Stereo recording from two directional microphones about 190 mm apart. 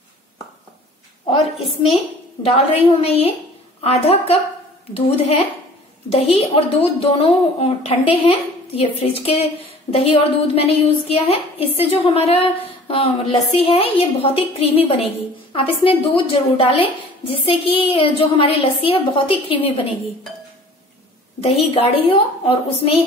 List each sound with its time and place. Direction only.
2.4 s a woman's voice: 30° left (ahead or behind)
21.4 s a woman's voice: 30° left (ahead or behind)